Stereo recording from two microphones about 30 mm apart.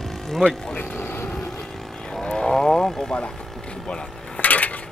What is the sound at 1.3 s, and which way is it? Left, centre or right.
Vehicle, left.